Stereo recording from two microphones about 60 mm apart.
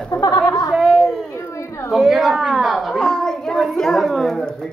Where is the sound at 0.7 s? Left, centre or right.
Centre.